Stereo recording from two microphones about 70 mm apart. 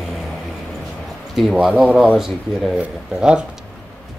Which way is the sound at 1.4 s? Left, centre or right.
Centre.